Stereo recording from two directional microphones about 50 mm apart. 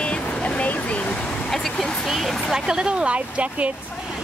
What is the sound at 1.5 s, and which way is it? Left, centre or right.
Vehicle, centre.